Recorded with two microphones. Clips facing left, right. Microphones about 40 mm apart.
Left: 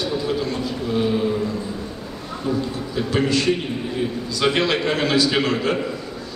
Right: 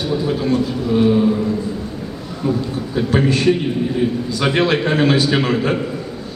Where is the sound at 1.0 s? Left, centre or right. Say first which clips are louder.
Right 7 dB; centre.